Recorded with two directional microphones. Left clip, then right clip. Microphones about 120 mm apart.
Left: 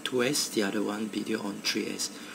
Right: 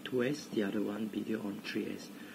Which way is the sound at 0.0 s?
15° left (ahead or behind).